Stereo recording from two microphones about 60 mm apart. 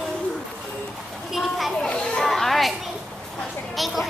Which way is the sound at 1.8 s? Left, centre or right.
Centre.